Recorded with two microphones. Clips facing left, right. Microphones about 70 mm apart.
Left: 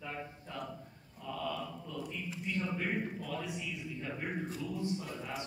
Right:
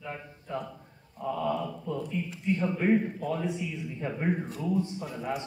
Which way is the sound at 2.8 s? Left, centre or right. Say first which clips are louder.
Right 11 dB; right.